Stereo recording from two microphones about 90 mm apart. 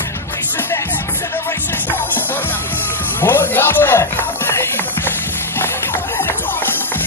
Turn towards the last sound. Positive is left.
turn(degrees=25)  # may be behind; listen again after turning